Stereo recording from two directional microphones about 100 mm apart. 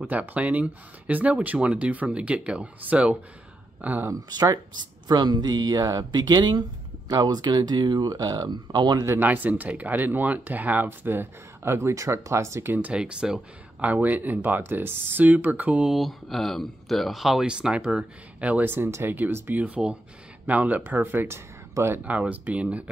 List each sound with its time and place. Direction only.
0.0 s speech: 15° right (ahead or behind)
4.1 s speech: 40° right (ahead or behind)
9.0 s speech: 20° right (ahead or behind)
12.7 s speech: 10° right (ahead or behind)